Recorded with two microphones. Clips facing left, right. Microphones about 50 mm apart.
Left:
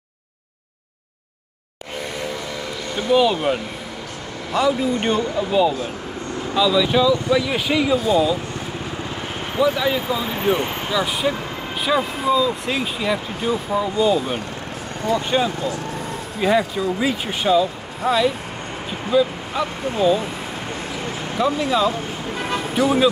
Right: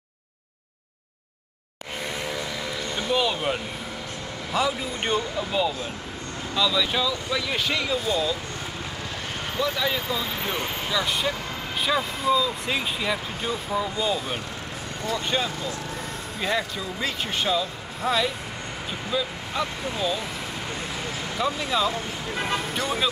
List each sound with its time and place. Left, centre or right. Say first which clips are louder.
3.0 s speech: left 8 dB; centre
9.6 s speech: left 7 dB; centre
19.9 s speech: left 12 dB; centre
21.4 s speech: left 6 dB; centre
22.4 s vehicle: left 7 dB; centre